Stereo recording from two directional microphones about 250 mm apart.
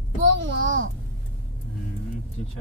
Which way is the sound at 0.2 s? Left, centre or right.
Right.